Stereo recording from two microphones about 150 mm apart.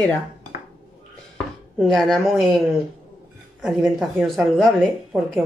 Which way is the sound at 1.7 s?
Centre (ahead or behind).